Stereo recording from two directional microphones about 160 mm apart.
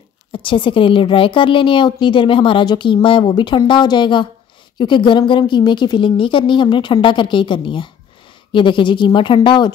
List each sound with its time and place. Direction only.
0.3 s a woman's voice: 30° left (ahead or behind)